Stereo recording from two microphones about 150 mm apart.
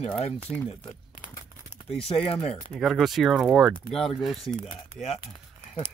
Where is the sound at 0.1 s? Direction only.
5° left (ahead or behind).